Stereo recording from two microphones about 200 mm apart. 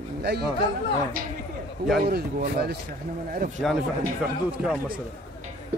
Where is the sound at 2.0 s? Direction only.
50° right (ahead or behind).